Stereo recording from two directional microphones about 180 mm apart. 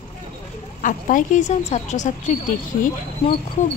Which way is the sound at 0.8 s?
45° left (ahead or behind).